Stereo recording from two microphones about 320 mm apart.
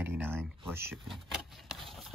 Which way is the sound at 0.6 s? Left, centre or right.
Centre.